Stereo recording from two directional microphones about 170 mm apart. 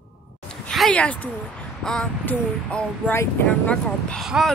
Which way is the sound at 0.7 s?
5° left (ahead or behind).